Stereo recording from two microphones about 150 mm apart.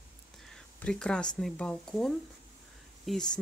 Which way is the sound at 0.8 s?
5° left (ahead or behind).